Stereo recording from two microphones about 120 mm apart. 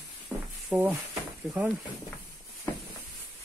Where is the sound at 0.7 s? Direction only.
15° right (ahead or behind).